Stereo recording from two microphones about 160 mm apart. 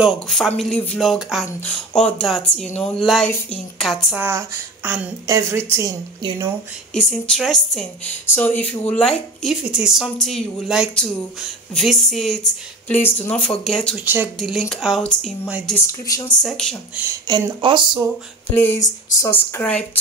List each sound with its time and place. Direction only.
0.0 s speech: centre (ahead or behind)
4.2 s a woman's voice: 15° right (ahead or behind)
6.9 s speech: 5° left (ahead or behind)
13.9 s a woman's voice: 10° right (ahead or behind)
14.7 s speech: centre (ahead or behind)
15.9 s speech: 20° left (ahead or behind)
16.4 s speech: 5° left (ahead or behind)
17.3 s speech: 30° right (ahead or behind)
18.5 s speech: 15° left (ahead or behind)